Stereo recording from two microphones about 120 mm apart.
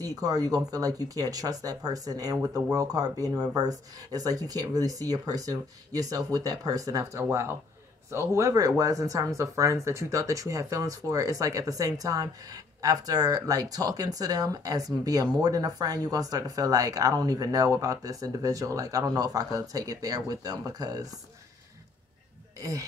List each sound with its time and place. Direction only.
0.0 s speech: 30° right (ahead or behind)
22.6 s speech: 30° right (ahead or behind)